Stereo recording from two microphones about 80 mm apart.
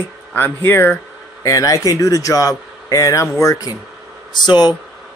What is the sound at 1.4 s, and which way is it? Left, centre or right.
A man's voice, left.